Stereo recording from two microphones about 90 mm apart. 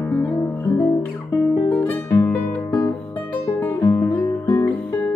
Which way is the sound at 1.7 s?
25° left (ahead or behind).